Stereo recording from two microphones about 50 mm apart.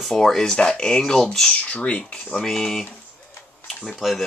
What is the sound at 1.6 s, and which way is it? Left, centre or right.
Speech, left.